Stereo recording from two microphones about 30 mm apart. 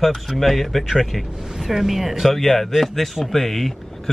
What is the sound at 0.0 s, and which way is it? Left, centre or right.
Speech, centre.